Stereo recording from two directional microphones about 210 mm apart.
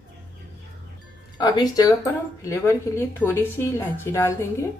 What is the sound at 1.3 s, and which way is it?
Speech, 20° left (ahead or behind).